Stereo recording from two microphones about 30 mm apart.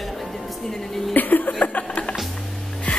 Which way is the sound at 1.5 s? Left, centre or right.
Left.